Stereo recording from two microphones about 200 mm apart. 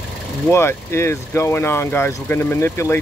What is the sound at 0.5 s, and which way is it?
Speech, 15° left (ahead or behind).